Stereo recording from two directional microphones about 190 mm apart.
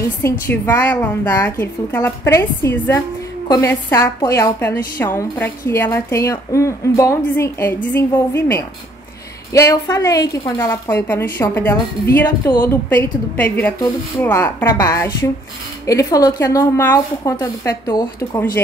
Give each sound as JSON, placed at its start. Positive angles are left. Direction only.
{"t": 0.2, "sound": "a woman's voice", "side_deg": 10}